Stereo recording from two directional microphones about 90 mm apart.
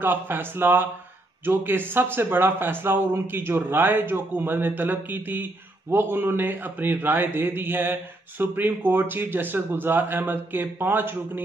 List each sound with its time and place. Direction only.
0.0 s speech: 25° right (ahead or behind)